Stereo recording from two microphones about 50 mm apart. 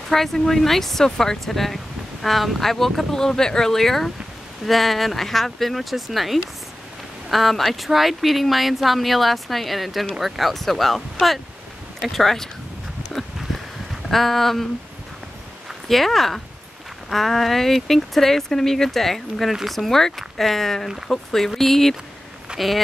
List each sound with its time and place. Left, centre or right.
0.1 s speech: centre
14.1 s speech: centre
15.9 s speech: centre
22.5 s walk: centre